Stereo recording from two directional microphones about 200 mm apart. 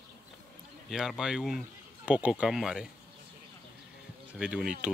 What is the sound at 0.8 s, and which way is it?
Speech, centre (ahead or behind).